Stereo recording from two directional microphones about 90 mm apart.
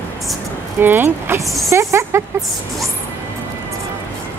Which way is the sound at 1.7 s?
30° right (ahead or behind).